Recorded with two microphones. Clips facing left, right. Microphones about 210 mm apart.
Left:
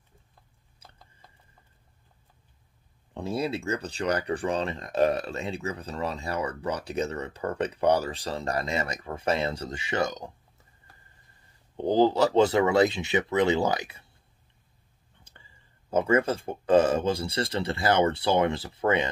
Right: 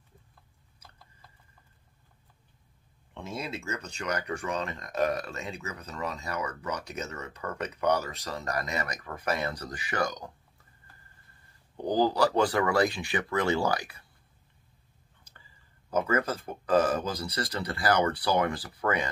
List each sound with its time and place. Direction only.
0.7 s a sound: 20° left (ahead or behind)
3.2 s speech: 35° left (ahead or behind)
11.7 s speech: 25° left (ahead or behind)
15.9 s speech: 25° left (ahead or behind)